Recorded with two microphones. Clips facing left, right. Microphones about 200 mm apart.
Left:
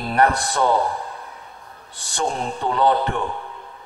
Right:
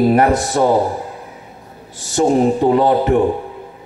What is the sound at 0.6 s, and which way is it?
Speech, 40° right (ahead or behind).